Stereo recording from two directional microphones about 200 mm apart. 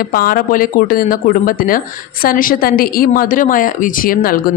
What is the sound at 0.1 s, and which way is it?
Speech, 45° left (ahead or behind).